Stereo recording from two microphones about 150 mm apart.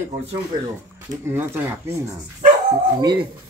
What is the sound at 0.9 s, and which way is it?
Speech, 15° right (ahead or behind).